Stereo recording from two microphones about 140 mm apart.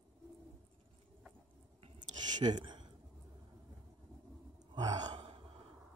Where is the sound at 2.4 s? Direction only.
30° right (ahead or behind).